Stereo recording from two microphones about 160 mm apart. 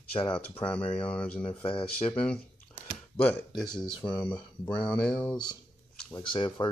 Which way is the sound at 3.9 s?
30° left (ahead or behind).